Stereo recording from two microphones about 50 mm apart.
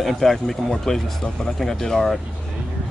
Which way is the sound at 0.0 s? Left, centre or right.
Centre.